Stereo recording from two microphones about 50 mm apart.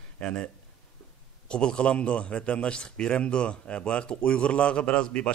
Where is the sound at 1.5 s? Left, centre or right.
Centre.